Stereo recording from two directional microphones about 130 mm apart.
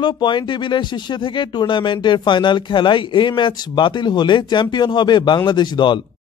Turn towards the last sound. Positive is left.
turn(degrees=35)  # may be behind; listen again after turning